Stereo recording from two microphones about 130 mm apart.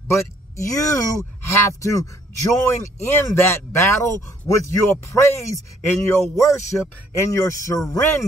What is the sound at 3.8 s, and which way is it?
Speech, 20° left (ahead or behind).